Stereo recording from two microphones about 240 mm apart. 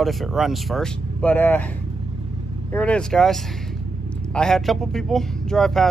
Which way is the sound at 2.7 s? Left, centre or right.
Centre.